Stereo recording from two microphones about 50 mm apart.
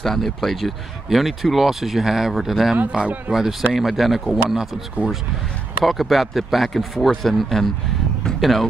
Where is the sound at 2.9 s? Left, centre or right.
Right.